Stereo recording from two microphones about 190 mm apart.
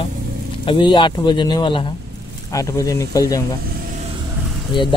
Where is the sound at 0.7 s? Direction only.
25° left (ahead or behind).